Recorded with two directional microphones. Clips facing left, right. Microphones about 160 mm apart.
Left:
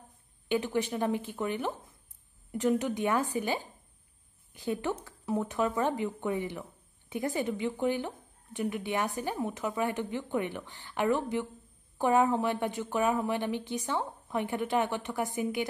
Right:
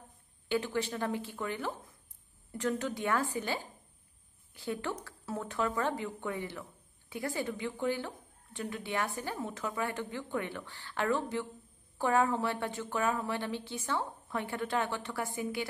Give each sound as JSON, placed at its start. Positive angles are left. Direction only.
{"t": 0.5, "sound": "a woman's voice", "side_deg": 20}